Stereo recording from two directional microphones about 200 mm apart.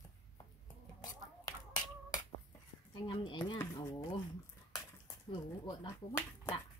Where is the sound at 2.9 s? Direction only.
25° left (ahead or behind).